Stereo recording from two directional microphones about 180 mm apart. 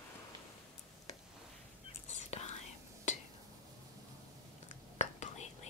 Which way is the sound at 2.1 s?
40° left (ahead or behind).